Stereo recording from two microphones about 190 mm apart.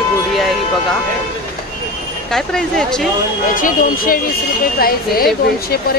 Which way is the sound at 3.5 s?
45° left (ahead or behind).